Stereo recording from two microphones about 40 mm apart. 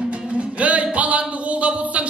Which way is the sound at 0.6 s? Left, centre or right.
Right.